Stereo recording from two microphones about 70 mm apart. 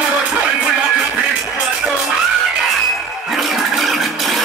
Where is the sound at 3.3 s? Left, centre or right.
Centre.